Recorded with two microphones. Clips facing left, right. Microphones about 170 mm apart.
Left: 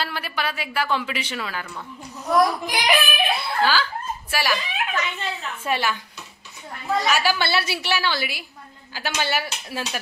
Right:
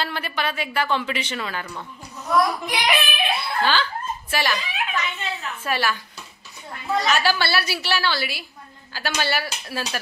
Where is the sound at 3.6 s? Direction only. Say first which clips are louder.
Left 1 dB; 10° left (ahead or behind).